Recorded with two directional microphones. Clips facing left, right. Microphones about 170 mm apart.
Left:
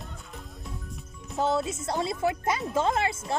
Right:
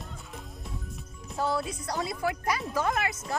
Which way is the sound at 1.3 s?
20° left (ahead or behind).